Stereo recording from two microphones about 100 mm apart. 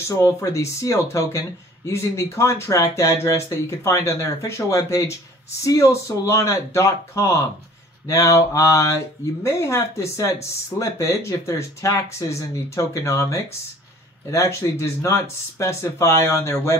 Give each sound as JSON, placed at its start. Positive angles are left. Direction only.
{"t": 0.2, "sound": "speech", "side_deg": 30}